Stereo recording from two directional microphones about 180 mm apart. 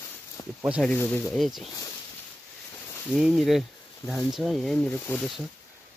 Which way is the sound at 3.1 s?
Centre (ahead or behind).